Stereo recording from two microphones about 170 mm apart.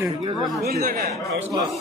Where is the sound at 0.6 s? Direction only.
60° right (ahead or behind).